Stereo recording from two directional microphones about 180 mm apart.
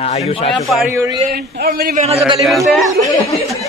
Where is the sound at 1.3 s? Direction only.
60° right (ahead or behind).